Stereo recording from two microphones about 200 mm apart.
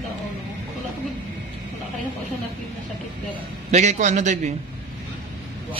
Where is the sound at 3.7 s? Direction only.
35° right (ahead or behind).